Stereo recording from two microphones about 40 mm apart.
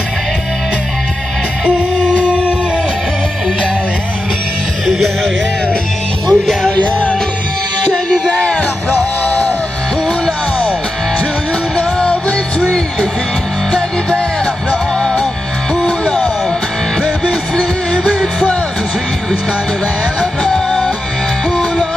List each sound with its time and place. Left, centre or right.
4.8 s music: centre
6.2 s music: centre
6.7 s music: left
8.3 s music: left
8.9 s music: left
12.1 s music: left
20.4 s music: centre